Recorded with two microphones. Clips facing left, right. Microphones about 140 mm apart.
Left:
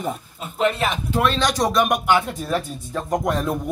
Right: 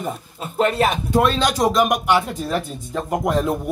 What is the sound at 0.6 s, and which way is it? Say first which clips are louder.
Speech: right 3 dB; 45° right (ahead or behind).